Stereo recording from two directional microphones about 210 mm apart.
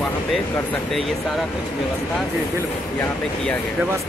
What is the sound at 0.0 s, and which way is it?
Speech, 10° left (ahead or behind).